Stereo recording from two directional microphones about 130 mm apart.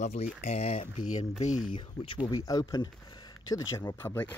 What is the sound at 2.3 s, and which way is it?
Speech, 30° left (ahead or behind).